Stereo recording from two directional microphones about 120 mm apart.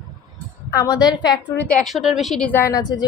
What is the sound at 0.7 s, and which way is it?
Speech, 25° left (ahead or behind).